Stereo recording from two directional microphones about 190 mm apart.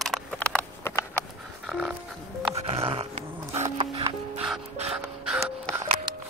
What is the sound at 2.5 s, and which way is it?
Music, 30° right (ahead or behind).